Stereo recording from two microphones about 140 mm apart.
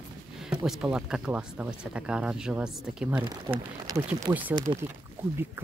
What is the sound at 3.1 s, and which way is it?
Speech, 30° right (ahead or behind).